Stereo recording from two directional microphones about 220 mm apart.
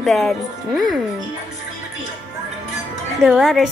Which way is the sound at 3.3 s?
Centre (ahead or behind).